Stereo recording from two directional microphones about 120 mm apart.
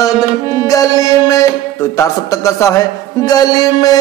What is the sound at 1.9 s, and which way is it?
A man's voice, 25° left (ahead or behind).